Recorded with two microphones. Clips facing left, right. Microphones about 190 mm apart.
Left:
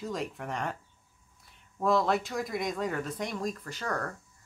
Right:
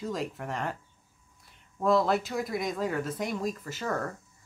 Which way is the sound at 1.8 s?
Centre (ahead or behind).